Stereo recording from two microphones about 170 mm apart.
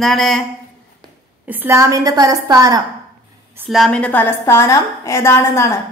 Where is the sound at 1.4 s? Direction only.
10° right (ahead or behind).